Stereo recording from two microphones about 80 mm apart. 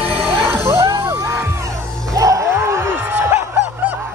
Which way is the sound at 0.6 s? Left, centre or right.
Right.